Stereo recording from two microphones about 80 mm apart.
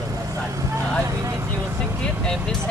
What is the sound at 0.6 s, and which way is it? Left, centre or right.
Speech, right.